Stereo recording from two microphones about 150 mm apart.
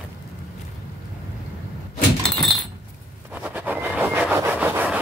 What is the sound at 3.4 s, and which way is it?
Train, 10° right (ahead or behind).